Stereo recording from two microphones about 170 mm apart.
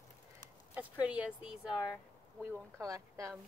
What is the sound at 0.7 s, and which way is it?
Speech, 10° right (ahead or behind).